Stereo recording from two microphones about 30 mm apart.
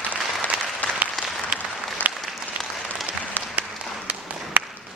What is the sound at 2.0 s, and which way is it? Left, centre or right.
Applause, left.